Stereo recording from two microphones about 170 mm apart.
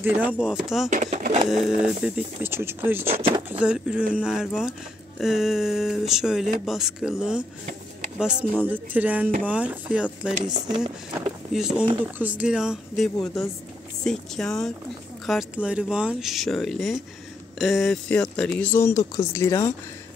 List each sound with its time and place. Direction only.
0.0 s speech: 10° right (ahead or behind)
0.8 s speech: 45° right (ahead or behind)
1.5 s speech: 5° right (ahead or behind)
10.5 s speech: 25° right (ahead or behind)
11.5 s speech: 5° right (ahead or behind); by 19.7 s 15° left (ahead or behind)